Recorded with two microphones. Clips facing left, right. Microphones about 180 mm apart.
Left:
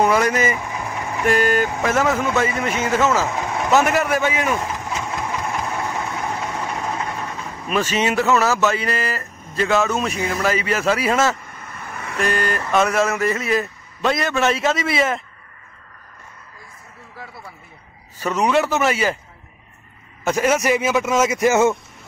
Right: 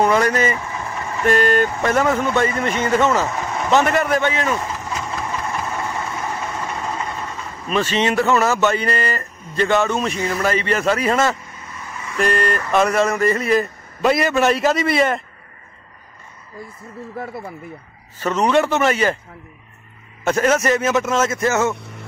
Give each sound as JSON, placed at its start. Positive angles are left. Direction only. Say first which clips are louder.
{"t": 0.0, "sound": "speech", "louder": "right 1 dB", "side_deg": 5}
{"t": 5.0, "sound": "vehicle", "louder": "even", "side_deg": 15}
{"t": 11.4, "sound": "vehicle", "louder": "even", "side_deg": 55}
{"t": 12.2, "sound": "speech", "louder": "right 3 dB", "side_deg": 0}
{"t": 17.2, "sound": "speech", "louder": "right 8 dB", "side_deg": -50}
{"t": 18.2, "sound": "speech", "louder": "right 2 dB", "side_deg": 10}
{"t": 20.2, "sound": "a man's voice", "louder": "right 1 dB", "side_deg": 10}